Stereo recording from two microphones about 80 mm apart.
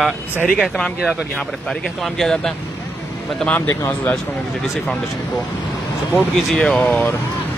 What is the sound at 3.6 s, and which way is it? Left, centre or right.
Speech, left.